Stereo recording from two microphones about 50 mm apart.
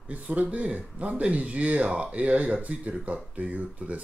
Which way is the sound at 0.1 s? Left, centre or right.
Right.